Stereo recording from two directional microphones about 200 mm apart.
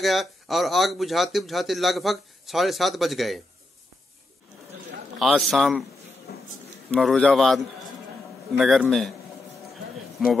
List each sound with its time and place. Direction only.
0.0 s speech: centre (ahead or behind)
5.2 s speech: centre (ahead or behind)
6.3 s a sound: 50° left (ahead or behind)
6.9 s speech: centre (ahead or behind)
10.2 s speech: centre (ahead or behind)